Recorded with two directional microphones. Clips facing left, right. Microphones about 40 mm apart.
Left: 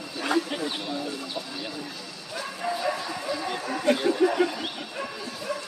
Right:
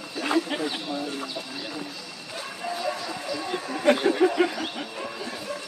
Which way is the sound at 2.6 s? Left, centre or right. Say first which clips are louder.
Left 2 dB; centre.